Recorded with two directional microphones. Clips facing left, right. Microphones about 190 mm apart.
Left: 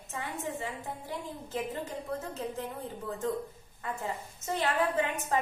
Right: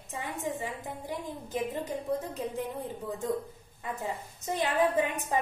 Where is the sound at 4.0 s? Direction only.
15° right (ahead or behind).